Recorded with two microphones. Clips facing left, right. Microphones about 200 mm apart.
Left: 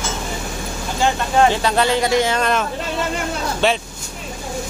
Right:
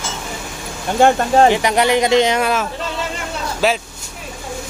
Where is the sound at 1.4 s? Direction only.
15° right (ahead or behind).